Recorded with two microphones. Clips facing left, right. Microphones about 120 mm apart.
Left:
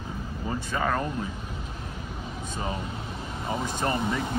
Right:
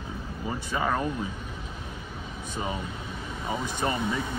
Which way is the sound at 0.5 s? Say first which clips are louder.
Even; 15° right (ahead or behind).